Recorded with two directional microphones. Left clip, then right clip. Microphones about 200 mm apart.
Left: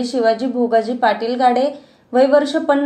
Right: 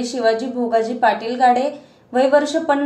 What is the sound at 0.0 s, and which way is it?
A woman's voice, 20° left (ahead or behind).